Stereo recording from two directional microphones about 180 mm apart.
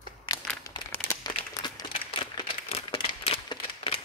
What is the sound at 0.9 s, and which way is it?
Crumpling, 15° left (ahead or behind).